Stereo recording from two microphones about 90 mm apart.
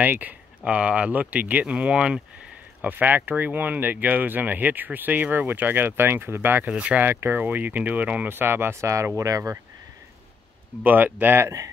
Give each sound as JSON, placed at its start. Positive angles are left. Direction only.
{"t": 0.0, "sound": "speech", "side_deg": -20}
{"t": 2.8, "sound": "speech", "side_deg": -20}
{"t": 6.7, "sound": "speech", "side_deg": -10}
{"t": 10.8, "sound": "speech", "side_deg": -20}